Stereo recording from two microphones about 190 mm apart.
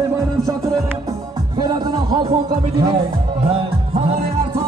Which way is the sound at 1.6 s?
20° right (ahead or behind).